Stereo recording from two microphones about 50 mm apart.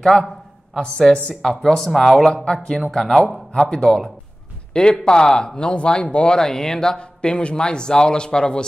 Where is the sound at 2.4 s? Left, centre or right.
Centre.